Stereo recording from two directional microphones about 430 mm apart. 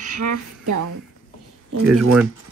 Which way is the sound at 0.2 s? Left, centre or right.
Right.